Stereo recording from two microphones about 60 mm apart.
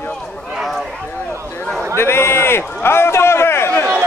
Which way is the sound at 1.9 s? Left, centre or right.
Left.